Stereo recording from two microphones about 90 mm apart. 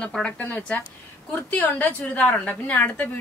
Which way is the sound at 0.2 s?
15° left (ahead or behind).